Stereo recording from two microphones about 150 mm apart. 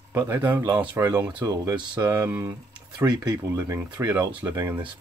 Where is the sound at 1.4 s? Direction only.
25° right (ahead or behind).